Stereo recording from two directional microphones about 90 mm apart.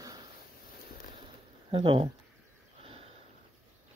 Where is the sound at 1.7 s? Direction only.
65° right (ahead or behind).